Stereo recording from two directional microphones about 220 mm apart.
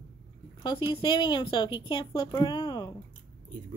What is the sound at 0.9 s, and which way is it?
A woman's voice, 20° left (ahead or behind).